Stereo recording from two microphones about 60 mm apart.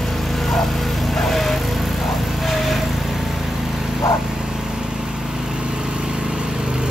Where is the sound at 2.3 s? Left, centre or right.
Centre.